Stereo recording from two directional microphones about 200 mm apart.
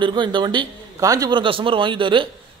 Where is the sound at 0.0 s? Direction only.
25° right (ahead or behind).